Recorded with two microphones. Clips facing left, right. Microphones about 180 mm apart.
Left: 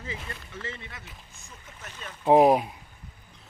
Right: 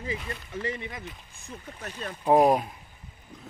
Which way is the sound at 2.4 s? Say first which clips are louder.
Left 2 dB; 5° left (ahead or behind).